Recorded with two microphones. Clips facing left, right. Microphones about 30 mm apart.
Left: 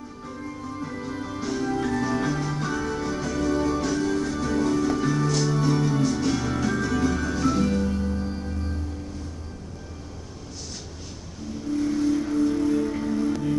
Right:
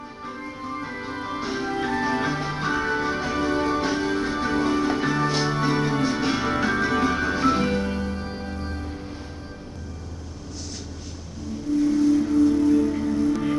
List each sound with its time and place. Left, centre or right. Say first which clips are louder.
0.2 s music: right 2 dB; right
11.7 s music: right 4 dB; centre